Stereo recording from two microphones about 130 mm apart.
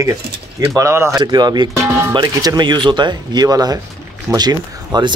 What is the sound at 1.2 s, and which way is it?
Speech, 35° right (ahead or behind).